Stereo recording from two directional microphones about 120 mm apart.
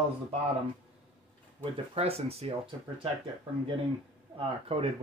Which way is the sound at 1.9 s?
55° right (ahead or behind).